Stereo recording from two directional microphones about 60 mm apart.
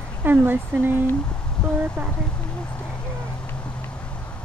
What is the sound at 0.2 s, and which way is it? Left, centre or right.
Speech, right.